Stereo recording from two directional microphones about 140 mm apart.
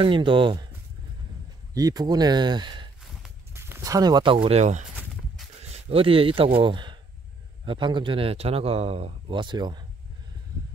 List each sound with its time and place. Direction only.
0.0 s speech: 35° right (ahead or behind)
1.7 s speech: 25° right (ahead or behind)
3.5 s speech: 15° right (ahead or behind); by 4.6 s 40° right (ahead or behind)
4.6 s speech: 55° right (ahead or behind); by 9.8 s 30° right (ahead or behind)